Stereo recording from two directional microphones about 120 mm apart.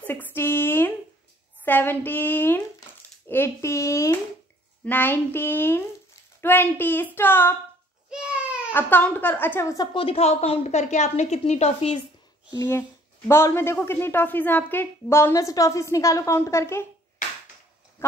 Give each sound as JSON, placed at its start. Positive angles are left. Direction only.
{"t": 0.0, "sound": "a sound", "side_deg": 15}
{"t": 1.6, "sound": "a woman's voice", "side_deg": 15}
{"t": 4.8, "sound": "a woman's voice", "side_deg": 15}
{"t": 8.1, "sound": "a sound", "side_deg": -10}
{"t": 8.7, "sound": "a woman's voice", "side_deg": 15}
{"t": 9.9, "sound": "a woman's voice", "side_deg": 55}
{"t": 12.4, "sound": "a woman's voice", "side_deg": 25}